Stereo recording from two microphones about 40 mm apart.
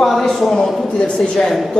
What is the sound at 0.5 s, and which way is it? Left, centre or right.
Speech, left.